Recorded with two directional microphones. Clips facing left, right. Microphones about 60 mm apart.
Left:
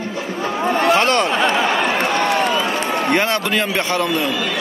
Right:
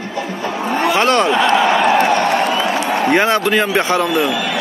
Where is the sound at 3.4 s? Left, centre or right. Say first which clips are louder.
Right 4 dB; centre.